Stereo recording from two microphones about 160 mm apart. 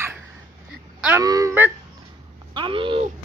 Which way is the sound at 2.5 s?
30° right (ahead or behind).